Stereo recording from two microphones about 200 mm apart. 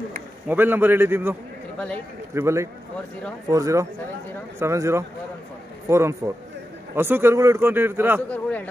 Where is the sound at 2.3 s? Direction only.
15° right (ahead or behind).